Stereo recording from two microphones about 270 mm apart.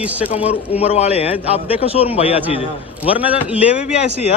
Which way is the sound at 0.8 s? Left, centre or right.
Left.